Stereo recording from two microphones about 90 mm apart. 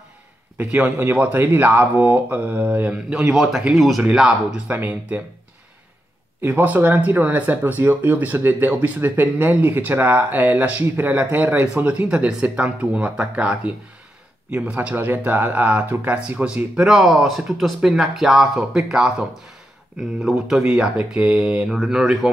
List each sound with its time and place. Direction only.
0.6 s speech: 20° right (ahead or behind)
3.3 s speech: 5° right (ahead or behind)
4.6 s speech: 20° right (ahead or behind)
6.4 s speech: 20° right (ahead or behind); by 22.3 s 5° right (ahead or behind)